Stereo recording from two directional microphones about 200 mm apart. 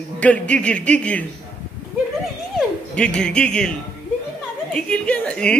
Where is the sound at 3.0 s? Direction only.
5° left (ahead or behind).